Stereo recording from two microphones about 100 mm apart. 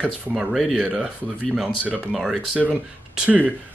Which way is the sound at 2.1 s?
5° right (ahead or behind).